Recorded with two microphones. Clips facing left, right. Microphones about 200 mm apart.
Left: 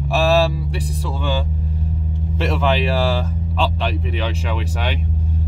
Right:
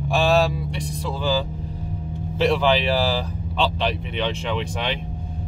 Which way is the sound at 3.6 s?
Centre (ahead or behind).